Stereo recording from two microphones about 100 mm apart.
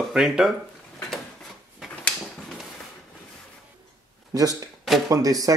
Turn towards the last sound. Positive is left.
turn(degrees=-35)  # may be behind; listen again after turning